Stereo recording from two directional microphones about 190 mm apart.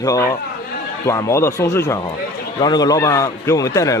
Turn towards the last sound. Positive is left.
turn(degrees=15)  # may be behind; listen again after turning